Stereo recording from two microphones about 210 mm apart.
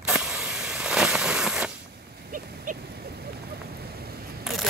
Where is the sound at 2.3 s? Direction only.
40° right (ahead or behind).